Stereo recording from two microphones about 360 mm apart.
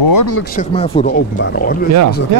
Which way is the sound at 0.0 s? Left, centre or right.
Left.